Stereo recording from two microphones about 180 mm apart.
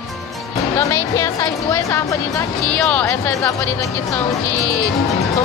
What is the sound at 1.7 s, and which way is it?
A woman's voice, 15° left (ahead or behind).